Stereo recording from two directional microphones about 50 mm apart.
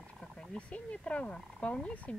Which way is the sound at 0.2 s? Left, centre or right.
Centre.